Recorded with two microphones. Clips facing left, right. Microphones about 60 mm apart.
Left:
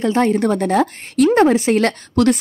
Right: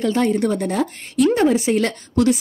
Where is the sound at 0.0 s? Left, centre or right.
Left.